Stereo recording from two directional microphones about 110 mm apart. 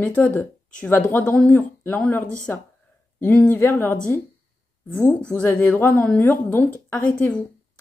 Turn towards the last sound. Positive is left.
turn(degrees=20)  # may be behind; listen again after turning